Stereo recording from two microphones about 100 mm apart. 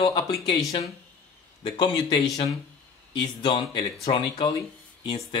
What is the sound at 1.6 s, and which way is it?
A man's voice, 45° left (ahead or behind).